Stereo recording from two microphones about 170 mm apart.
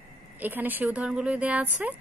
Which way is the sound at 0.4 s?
10° right (ahead or behind).